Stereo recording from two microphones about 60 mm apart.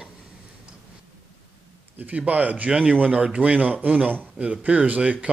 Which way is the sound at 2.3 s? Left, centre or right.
Right.